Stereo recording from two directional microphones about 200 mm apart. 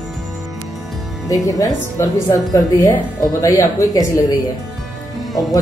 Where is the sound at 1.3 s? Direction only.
15° left (ahead or behind).